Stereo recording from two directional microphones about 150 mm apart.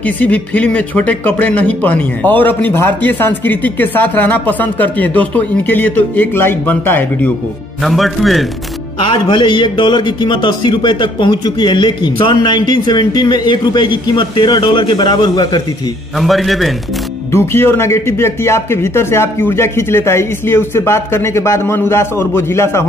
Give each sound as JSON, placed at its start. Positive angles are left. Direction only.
{"t": 0.0, "sound": "speech", "side_deg": 10}
{"t": 7.8, "sound": "a man's voice", "side_deg": 0}
{"t": 9.0, "sound": "a man's voice", "side_deg": 35}
{"t": 16.2, "sound": "a man's voice", "side_deg": 0}
{"t": 17.3, "sound": "speech", "side_deg": 15}